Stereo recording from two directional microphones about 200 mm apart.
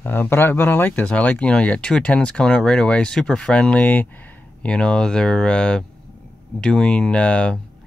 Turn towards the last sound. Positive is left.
turn(degrees=5)  # may be behind; listen again after turning